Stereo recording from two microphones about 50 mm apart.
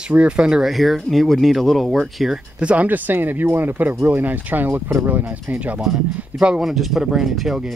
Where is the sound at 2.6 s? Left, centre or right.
Right.